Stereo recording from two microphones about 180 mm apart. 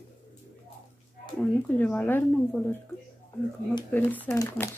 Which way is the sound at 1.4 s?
5° left (ahead or behind).